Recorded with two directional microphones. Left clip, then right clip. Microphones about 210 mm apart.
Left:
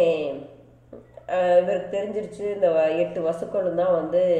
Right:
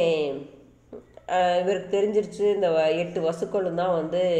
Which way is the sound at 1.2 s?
30° right (ahead or behind).